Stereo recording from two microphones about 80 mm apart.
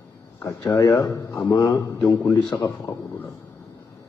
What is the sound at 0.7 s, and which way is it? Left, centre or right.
Speech, left.